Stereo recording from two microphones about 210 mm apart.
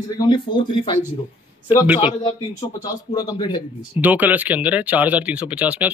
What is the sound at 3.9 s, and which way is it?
Speech, 10° right (ahead or behind).